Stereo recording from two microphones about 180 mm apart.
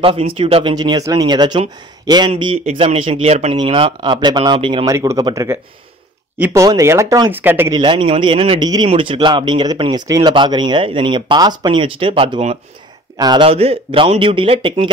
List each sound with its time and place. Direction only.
0.0 s speech: 30° right (ahead or behind)
4.8 s speech: 15° right (ahead or behind)
7.8 s speech: 30° right (ahead or behind)